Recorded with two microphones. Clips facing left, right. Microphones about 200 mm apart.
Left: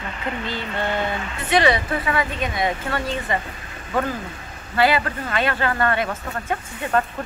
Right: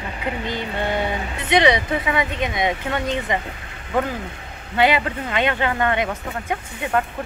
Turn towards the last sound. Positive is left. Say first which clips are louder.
# even
turn(degrees=-15)  # may be behind; listen again after turning